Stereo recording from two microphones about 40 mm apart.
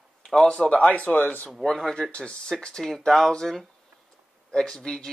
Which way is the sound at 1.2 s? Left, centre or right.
Left.